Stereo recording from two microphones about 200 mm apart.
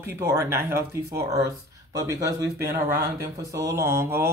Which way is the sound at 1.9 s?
15° right (ahead or behind).